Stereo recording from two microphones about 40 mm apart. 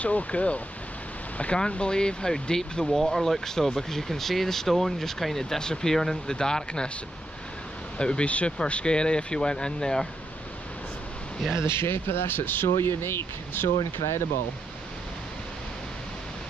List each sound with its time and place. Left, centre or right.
0.0 s speech: left
1.7 s speech: left
8.0 s speech: left
11.6 s speech: left